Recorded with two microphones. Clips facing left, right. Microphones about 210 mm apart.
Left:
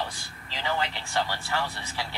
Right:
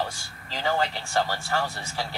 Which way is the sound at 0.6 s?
40° right (ahead or behind).